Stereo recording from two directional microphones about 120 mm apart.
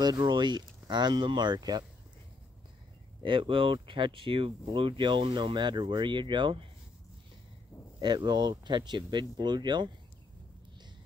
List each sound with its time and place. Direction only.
0.0 s speech: 35° right (ahead or behind)
3.2 s speech: 45° right (ahead or behind)
8.0 s speech: 40° right (ahead or behind)